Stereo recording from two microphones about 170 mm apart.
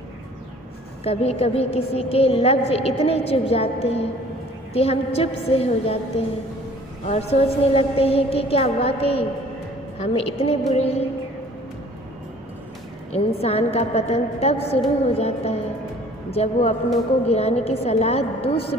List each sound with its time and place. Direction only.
1.0 s a woman's voice: 35° left (ahead or behind)
13.1 s a woman's voice: 35° left (ahead or behind)